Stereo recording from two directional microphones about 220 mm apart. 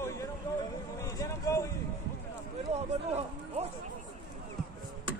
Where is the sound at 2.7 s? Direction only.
30° right (ahead or behind).